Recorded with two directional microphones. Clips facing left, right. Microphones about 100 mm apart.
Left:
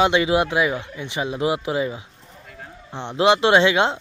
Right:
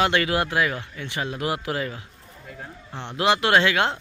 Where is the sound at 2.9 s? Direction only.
20° left (ahead or behind).